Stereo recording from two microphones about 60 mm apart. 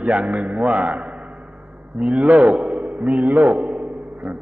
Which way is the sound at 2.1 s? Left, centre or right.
Centre.